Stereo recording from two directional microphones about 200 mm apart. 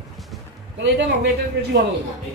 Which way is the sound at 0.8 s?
60° right (ahead or behind).